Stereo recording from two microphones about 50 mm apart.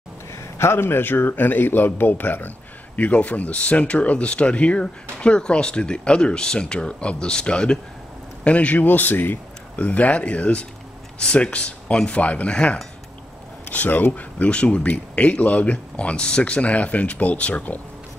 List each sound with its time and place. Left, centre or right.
0.3 s a man's voice: left
8.8 s a man's voice: left
13.7 s speech: left